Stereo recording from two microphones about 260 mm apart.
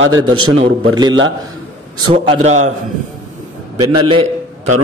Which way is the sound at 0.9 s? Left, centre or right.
Centre.